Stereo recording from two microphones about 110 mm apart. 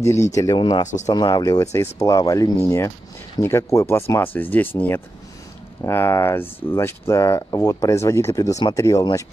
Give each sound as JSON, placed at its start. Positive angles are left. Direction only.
{"t": 0.0, "sound": "speech", "side_deg": 25}
{"t": 0.6, "sound": "speech", "side_deg": 40}